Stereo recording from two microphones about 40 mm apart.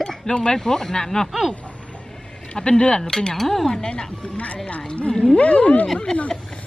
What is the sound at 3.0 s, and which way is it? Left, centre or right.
Speech, centre.